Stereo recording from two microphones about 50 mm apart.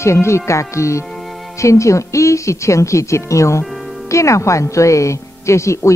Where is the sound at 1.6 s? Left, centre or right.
Left.